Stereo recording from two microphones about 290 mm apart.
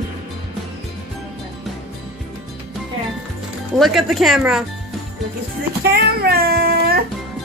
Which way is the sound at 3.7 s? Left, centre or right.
Centre.